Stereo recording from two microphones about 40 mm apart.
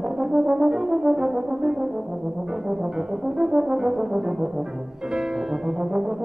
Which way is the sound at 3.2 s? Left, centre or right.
Centre.